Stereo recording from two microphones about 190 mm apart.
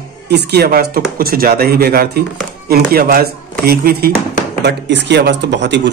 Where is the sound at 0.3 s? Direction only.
55° right (ahead or behind).